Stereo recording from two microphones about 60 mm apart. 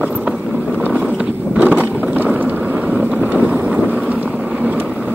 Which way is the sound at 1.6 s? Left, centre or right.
Right.